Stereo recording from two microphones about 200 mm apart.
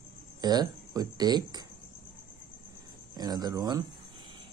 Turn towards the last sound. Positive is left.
turn(degrees=-20)  # may be behind; listen again after turning